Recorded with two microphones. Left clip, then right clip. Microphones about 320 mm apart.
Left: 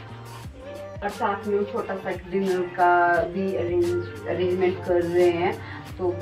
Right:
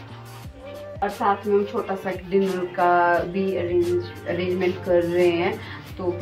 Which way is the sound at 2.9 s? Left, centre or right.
Right.